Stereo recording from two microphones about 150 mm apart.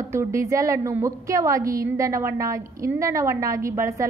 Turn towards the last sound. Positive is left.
turn(degrees=-20)  # may be behind; listen again after turning